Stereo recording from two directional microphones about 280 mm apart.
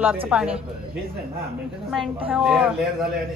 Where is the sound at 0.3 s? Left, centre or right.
Centre.